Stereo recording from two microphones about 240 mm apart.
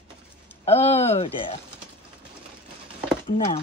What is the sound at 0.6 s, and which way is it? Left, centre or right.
Speech, left.